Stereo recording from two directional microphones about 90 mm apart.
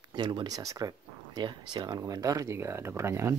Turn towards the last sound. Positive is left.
turn(degrees=-30)  # may be behind; listen again after turning